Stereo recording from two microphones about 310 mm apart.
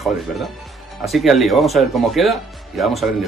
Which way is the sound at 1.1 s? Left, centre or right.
Centre.